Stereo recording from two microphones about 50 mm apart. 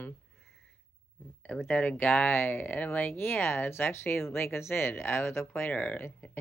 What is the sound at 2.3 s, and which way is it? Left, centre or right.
Speech, left.